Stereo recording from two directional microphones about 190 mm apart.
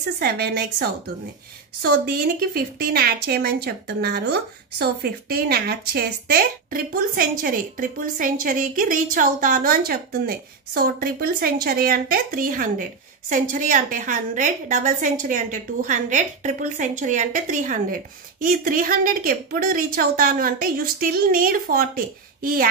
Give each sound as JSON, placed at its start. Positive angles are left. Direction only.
{"t": 0.2, "sound": "a woman's voice", "side_deg": -55}